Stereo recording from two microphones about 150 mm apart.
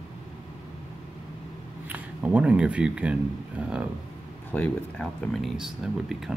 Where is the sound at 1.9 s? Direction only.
10° right (ahead or behind).